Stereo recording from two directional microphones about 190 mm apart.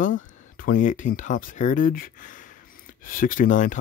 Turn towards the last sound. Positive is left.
turn(degrees=45)  # may be behind; listen again after turning